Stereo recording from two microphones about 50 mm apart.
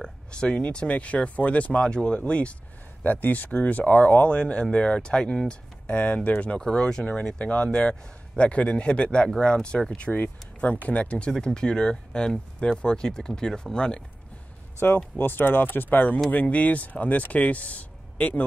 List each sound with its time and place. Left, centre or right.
0.0 s speech: centre
3.0 s speech: left
4.3 s speech: left
5.5 s speech: left
6.6 s speech: centre
10.2 s speech: left; by 14.0 s centre
14.8 s speech: left